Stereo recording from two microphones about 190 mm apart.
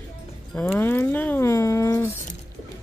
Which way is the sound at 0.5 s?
10° left (ahead or behind).